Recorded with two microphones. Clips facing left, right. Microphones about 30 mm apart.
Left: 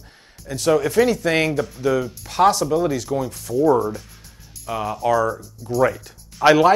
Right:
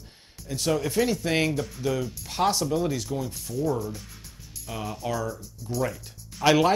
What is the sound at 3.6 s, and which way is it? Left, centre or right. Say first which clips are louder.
Speech: left 11 dB; left.